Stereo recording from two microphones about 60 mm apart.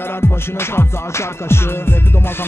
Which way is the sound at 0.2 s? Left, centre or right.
Left.